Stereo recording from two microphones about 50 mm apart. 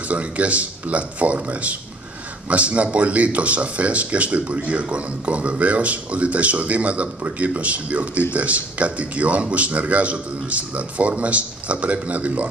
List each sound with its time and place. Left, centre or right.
0.1 s speech: right